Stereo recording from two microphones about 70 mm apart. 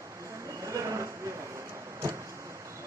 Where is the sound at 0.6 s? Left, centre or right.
Right.